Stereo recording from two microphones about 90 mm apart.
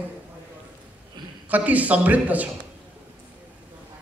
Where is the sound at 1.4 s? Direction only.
15° right (ahead or behind).